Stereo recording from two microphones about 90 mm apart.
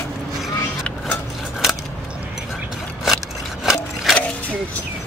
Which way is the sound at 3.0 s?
5° right (ahead or behind).